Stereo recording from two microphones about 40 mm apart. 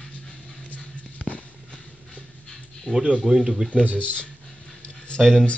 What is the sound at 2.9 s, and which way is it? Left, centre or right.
Speech, left.